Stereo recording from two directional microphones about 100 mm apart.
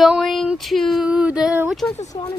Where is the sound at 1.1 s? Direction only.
10° right (ahead or behind).